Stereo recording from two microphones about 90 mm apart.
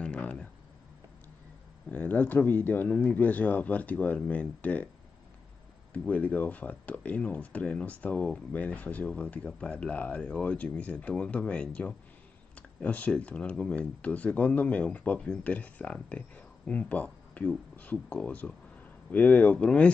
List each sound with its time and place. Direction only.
0.0 s a sound: 15° left (ahead or behind)
1.9 s speech: 20° left (ahead or behind)
6.0 s speech: 15° left (ahead or behind)